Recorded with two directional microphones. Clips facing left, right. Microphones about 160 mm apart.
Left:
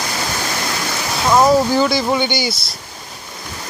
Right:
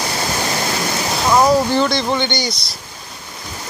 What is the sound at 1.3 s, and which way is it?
Speech, 5° left (ahead or behind).